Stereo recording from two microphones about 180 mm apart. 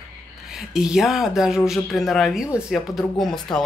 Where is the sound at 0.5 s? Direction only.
Centre (ahead or behind).